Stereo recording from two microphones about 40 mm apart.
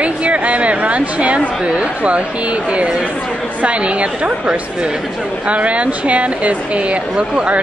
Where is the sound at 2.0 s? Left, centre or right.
Right.